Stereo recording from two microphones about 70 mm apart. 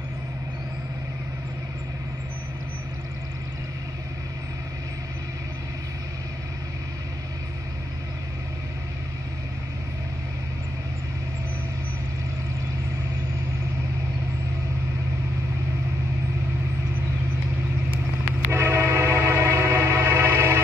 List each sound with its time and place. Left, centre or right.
18.5 s train: right